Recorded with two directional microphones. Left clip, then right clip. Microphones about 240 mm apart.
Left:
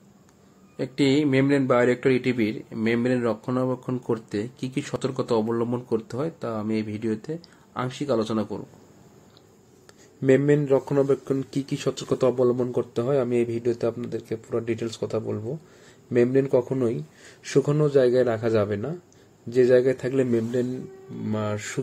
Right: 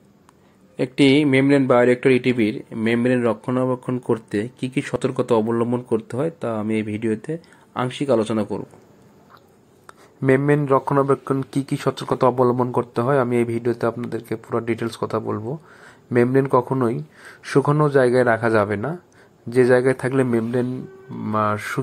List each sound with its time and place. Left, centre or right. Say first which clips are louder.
0.7 s speech: right 6 dB; centre
10.2 s speech: right 2 dB; centre